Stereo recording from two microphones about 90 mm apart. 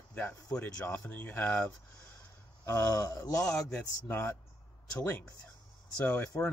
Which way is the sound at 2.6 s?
35° left (ahead or behind).